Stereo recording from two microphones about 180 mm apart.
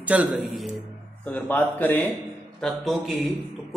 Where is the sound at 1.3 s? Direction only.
10° left (ahead or behind).